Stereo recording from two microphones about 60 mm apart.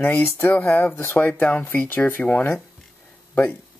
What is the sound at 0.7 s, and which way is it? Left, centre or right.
Speech, left.